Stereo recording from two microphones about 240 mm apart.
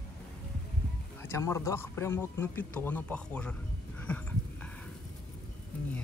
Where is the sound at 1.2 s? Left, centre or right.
Centre.